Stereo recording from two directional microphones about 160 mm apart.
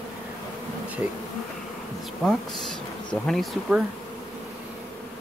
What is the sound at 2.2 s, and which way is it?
Speech, 5° left (ahead or behind).